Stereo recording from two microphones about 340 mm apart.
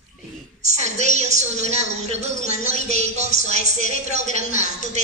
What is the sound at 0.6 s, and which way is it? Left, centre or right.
A woman's voice, centre.